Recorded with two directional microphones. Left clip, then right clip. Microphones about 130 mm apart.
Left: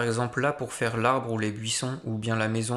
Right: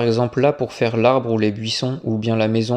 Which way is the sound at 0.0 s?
30° right (ahead or behind).